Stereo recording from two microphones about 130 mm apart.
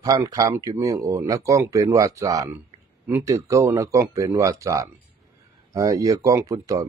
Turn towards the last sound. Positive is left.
turn(degrees=-25)  # may be behind; listen again after turning